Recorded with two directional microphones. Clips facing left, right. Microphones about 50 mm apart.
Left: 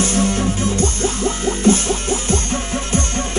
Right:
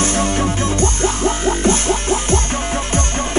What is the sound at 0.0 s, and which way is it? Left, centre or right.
Music, right.